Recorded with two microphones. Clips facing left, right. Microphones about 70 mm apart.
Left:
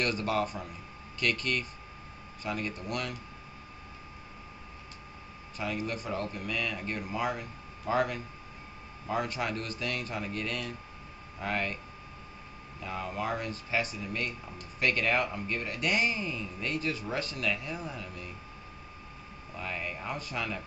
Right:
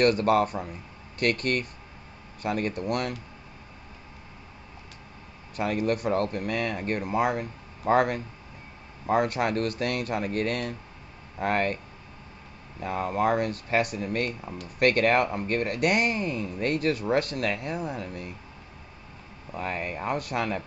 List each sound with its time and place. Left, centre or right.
0.0 s speech: right
5.6 s speech: right
12.8 s speech: right
19.5 s speech: right